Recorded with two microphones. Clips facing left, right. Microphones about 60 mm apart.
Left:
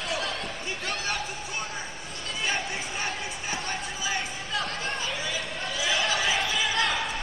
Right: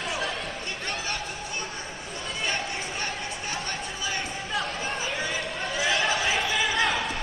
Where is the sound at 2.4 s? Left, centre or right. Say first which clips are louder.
Left 1 dB; centre.